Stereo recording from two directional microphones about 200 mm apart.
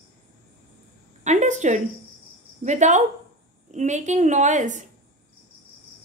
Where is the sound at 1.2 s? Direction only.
35° right (ahead or behind).